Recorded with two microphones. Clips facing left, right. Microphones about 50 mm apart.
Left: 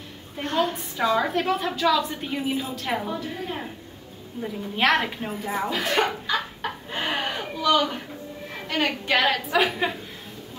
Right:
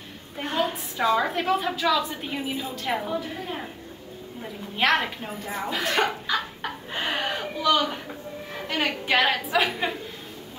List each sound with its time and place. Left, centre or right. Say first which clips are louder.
0.4 s a woman's voice: left 2 dB; centre
5.7 s chicken: right 1 dB; centre
8.6 s a woman's voice: left 1 dB; centre